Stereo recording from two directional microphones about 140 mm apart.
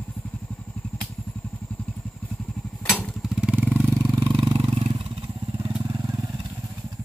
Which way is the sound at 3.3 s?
10° right (ahead or behind).